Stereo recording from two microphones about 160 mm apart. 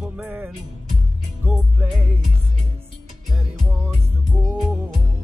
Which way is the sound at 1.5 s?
5° right (ahead or behind).